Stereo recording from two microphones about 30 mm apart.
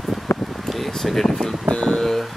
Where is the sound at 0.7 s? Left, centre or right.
Centre.